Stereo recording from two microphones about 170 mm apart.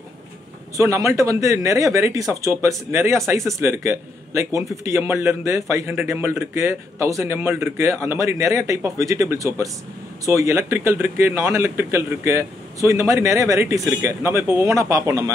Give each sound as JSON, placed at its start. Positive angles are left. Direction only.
{"t": 0.7, "sound": "speech", "side_deg": -20}